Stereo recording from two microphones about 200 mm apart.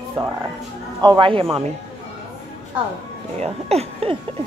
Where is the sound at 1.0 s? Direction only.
25° right (ahead or behind).